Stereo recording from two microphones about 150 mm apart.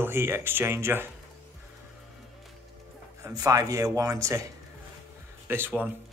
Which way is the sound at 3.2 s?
20° right (ahead or behind).